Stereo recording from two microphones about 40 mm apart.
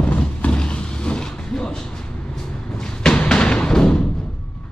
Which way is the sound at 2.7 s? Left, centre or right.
Centre.